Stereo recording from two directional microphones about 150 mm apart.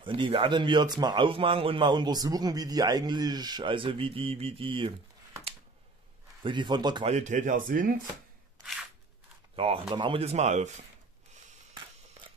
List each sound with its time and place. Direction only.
0.0 s a man's voice: 35° right (ahead or behind)
6.4 s a man's voice: 30° right (ahead or behind)
7.1 s speech: 50° right (ahead or behind)
9.6 s a man's voice: 40° right (ahead or behind)
11.7 s a sound: 35° right (ahead or behind)